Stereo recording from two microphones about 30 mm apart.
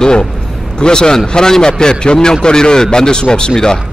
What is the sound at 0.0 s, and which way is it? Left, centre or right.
A man's voice, left.